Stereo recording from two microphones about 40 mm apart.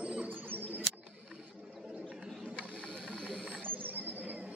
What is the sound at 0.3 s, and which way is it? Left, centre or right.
Bird, right.